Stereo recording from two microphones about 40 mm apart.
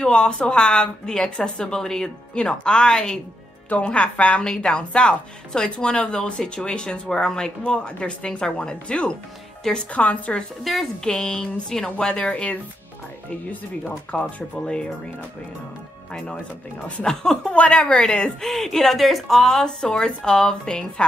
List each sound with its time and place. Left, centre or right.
0.0 s a woman's voice: centre
3.8 s a woman's voice: left
9.8 s a woman's voice: left
10.6 s speech: centre
11.1 s speech: centre
12.2 s a woman's voice: left
14.1 s a woman's voice: left
16.1 s a woman's voice: centre
17.5 s a woman's voice: left
18.4 s speech: centre